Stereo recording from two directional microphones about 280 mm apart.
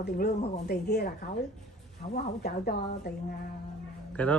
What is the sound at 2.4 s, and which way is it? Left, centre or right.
Speech, left.